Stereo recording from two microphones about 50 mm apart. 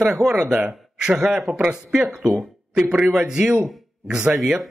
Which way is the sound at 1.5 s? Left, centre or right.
Right.